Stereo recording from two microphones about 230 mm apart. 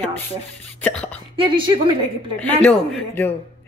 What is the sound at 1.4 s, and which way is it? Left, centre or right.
Speech, right.